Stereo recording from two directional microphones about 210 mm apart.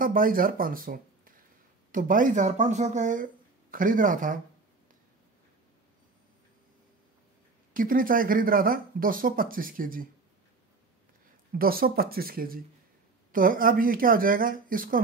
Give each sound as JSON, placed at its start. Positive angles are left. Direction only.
{"t": 0.0, "sound": "speech", "side_deg": -40}
{"t": 7.7, "sound": "speech", "side_deg": -40}
{"t": 11.5, "sound": "speech", "side_deg": -45}